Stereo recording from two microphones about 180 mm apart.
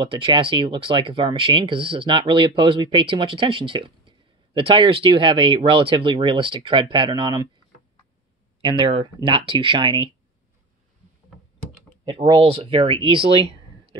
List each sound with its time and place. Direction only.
0.0 s speech: 30° right (ahead or behind)
8.5 s speech: 25° right (ahead or behind)
12.0 s speech: 30° right (ahead or behind)